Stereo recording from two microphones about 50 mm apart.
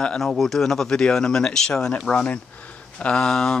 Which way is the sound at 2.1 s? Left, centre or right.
Left.